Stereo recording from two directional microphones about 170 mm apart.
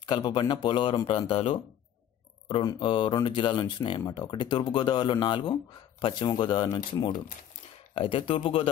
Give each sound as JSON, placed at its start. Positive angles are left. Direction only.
{"t": 0.0, "sound": "speech", "side_deg": 25}